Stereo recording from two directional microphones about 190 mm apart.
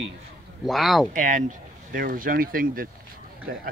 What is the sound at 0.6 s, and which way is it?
Speech, centre (ahead or behind).